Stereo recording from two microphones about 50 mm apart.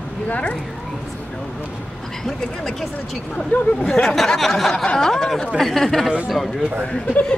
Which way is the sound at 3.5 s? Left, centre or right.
Left.